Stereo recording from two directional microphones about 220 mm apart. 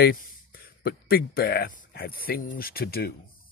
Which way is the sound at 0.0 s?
45° left (ahead or behind).